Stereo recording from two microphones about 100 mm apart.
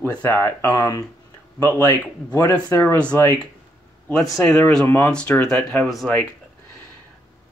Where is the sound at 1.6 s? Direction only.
25° left (ahead or behind).